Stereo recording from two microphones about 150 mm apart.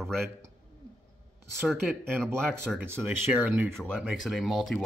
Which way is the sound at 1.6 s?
Centre (ahead or behind).